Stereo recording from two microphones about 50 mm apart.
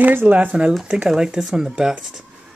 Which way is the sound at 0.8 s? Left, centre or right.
Centre.